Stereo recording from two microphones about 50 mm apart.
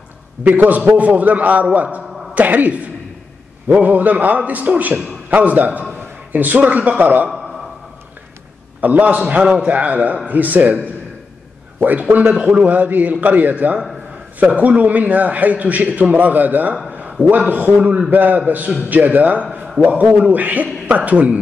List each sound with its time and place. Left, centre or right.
0.4 s a man's voice: right
5.9 s a man's voice: right
8.8 s a man's voice: right
12.4 s a man's voice: centre
12.6 s a man's voice: right